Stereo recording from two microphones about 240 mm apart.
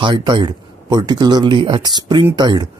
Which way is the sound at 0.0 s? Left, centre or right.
Centre.